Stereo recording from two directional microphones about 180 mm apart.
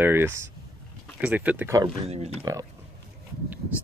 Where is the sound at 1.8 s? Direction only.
35° right (ahead or behind).